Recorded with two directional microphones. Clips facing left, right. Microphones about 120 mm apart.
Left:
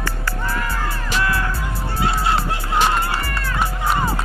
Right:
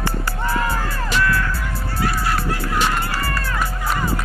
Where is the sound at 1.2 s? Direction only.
25° left (ahead or behind).